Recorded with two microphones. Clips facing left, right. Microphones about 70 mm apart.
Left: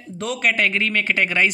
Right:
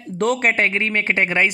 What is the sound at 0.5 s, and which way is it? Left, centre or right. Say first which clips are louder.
Speech: right 1 dB; right.